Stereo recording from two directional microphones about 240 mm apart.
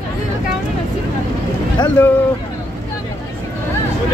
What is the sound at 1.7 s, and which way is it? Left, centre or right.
Speech, centre.